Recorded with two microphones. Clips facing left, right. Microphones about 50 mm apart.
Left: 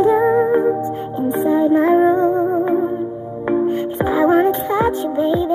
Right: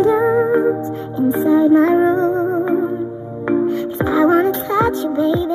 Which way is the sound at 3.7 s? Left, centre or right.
Left.